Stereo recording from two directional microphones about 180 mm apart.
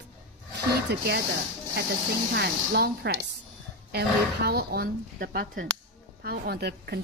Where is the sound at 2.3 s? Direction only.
65° right (ahead or behind).